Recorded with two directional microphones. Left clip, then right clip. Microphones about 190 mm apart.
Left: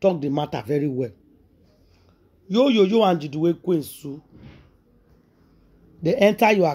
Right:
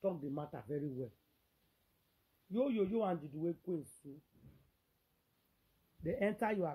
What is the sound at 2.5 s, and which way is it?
Speech, 30° left (ahead or behind).